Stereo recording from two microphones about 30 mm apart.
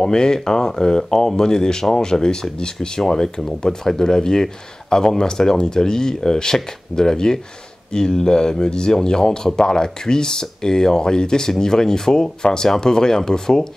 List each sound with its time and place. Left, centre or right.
0.0 s speech: left